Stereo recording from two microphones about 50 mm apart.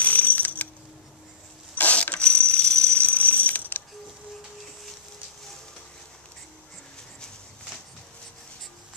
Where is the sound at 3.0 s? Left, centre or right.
Left.